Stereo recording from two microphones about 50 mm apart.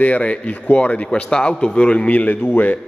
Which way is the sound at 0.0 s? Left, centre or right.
Left.